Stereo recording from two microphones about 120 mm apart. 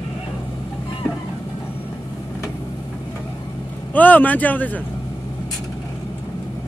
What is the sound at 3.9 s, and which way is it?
Speech, 15° left (ahead or behind).